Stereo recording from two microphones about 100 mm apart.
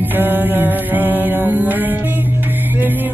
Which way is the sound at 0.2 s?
20° right (ahead or behind).